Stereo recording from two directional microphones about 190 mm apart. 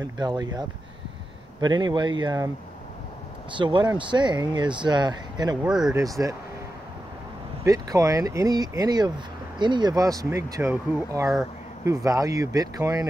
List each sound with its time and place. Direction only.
0.0 s speech: 20° right (ahead or behind)
3.5 s speech: 25° right (ahead or behind)
5.6 s speech: 5° right (ahead or behind)
5.9 s speech: 15° right (ahead or behind)
7.6 s speech: 15° right (ahead or behind)